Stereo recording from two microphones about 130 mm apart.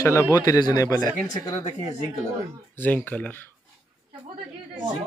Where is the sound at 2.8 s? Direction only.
15° left (ahead or behind).